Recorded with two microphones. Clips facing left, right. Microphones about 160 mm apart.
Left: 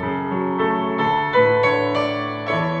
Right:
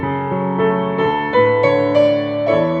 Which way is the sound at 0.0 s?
50° right (ahead or behind).